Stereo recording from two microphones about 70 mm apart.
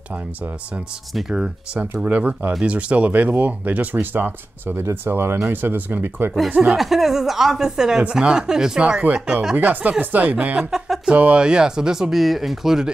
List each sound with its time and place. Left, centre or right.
1.3 s speech: centre
1.8 s speech: right
6.6 s speech: centre
9.6 s speech: right; by 12.9 s centre